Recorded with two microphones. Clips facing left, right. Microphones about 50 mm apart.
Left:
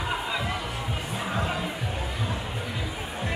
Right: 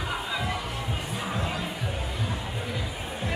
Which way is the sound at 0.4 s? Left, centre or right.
Centre.